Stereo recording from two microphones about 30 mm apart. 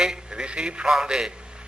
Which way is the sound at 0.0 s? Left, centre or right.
Right.